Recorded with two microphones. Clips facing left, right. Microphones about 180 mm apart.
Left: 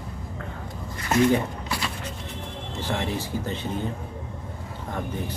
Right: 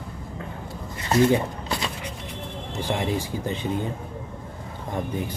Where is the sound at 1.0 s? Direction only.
20° right (ahead or behind).